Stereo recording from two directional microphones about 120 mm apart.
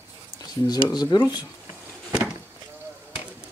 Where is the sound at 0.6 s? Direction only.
35° left (ahead or behind).